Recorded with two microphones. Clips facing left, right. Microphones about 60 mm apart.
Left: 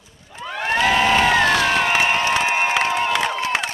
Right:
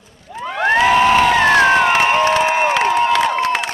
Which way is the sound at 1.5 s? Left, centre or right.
Right.